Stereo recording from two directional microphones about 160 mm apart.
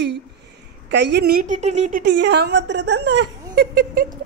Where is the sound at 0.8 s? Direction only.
90° right.